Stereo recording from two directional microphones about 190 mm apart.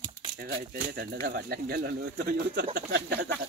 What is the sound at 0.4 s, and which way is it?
Speech, 50° right (ahead or behind).